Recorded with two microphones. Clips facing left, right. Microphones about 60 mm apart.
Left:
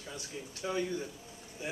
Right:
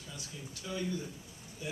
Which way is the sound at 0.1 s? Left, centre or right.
Left.